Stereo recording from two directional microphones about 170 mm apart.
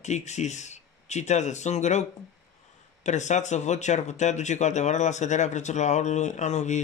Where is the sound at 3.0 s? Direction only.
45° left (ahead or behind).